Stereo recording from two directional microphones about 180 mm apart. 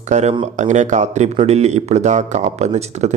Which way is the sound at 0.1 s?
40° right (ahead or behind).